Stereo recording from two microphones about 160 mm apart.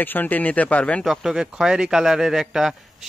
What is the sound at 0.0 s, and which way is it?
Speech, 10° left (ahead or behind).